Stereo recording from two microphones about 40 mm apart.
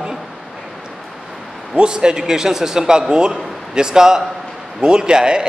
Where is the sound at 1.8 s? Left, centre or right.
Centre.